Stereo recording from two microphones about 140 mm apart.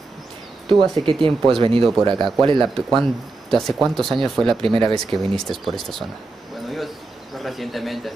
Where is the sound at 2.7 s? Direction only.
Centre (ahead or behind).